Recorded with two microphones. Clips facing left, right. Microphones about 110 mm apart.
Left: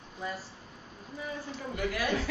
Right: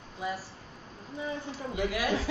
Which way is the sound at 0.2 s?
10° right (ahead or behind).